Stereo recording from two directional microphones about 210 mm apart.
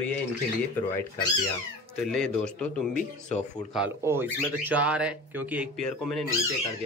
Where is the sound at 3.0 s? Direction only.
35° left (ahead or behind).